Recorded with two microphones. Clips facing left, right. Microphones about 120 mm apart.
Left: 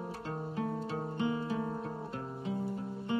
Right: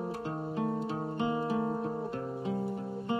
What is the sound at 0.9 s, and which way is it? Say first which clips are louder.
Music: right 2 dB; 25° right (ahead or behind).